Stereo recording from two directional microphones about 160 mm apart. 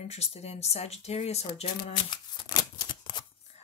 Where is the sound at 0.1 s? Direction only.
40° left (ahead or behind).